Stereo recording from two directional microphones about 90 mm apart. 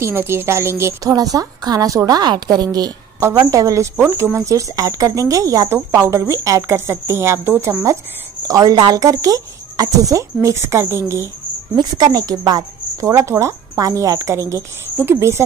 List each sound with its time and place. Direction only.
0.0 s speech: 25° right (ahead or behind)
1.0 s a woman's voice: 40° right (ahead or behind)
8.5 s speech: 45° right (ahead or behind)
11.7 s speech: 55° right (ahead or behind); by 15.4 s 30° right (ahead or behind)